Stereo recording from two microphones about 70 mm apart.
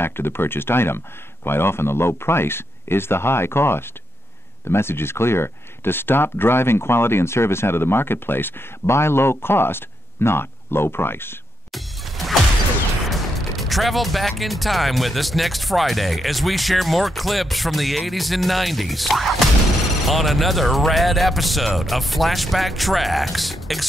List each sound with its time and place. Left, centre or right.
0.0 s speech: left
11.7 s music: centre
13.1 s speech: centre